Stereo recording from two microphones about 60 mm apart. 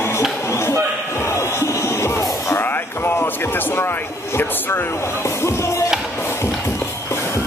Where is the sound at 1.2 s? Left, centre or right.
Left.